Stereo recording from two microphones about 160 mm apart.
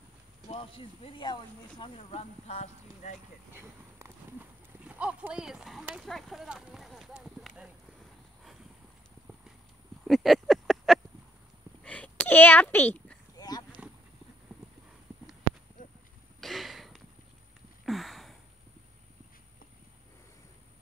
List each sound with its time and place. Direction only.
0.5 s speech: 35° left (ahead or behind)
2.0 s speech: 40° left (ahead or behind)
3.5 s speech: 15° right (ahead or behind)
10.0 s a sound: centre (ahead or behind)
13.4 s horse: 25° left (ahead or behind)
16.3 s a sound: centre (ahead or behind)